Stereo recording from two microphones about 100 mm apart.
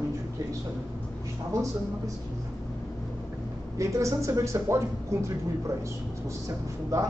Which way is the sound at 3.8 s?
30° right (ahead or behind).